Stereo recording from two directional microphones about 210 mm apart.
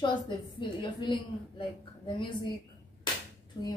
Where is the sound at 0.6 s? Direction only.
20° left (ahead or behind).